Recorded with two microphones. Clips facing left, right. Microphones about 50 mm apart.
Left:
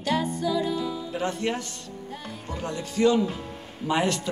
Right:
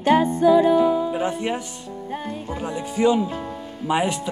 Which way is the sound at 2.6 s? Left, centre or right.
Centre.